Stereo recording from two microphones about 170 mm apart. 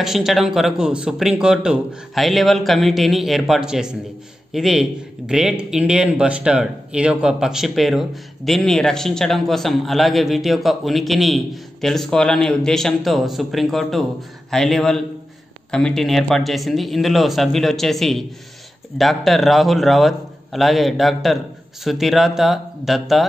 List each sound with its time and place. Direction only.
0.0 s a man's voice: centre (ahead or behind)